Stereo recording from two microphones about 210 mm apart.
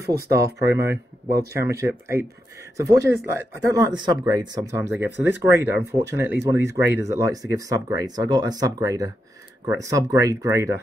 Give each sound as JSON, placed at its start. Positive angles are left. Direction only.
{"t": 0.3, "sound": "speech", "side_deg": -15}